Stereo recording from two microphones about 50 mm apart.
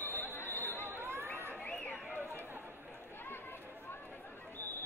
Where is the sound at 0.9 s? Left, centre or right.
Right.